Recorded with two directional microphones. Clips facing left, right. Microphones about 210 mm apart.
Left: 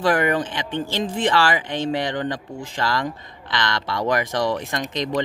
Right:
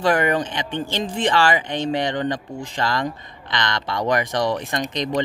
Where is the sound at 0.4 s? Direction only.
5° left (ahead or behind).